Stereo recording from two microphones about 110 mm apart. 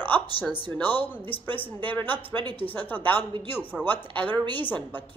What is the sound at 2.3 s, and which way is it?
Speech, 40° right (ahead or behind).